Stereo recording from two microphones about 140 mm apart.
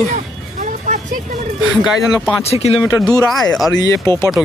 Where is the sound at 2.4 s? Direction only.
45° left (ahead or behind).